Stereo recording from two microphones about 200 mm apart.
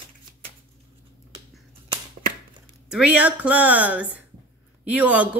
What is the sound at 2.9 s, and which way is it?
A woman's voice, 5° right (ahead or behind).